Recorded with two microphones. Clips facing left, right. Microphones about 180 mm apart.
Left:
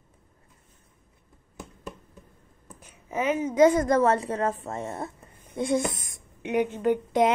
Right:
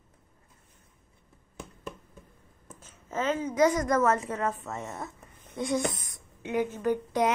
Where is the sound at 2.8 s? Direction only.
15° left (ahead or behind).